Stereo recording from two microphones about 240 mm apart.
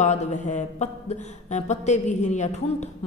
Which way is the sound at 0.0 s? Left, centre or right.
Left.